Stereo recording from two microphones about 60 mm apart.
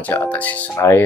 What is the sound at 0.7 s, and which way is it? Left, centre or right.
Speech, left.